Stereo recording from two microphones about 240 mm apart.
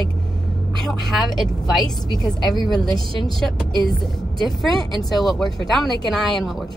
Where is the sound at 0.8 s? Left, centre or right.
Centre.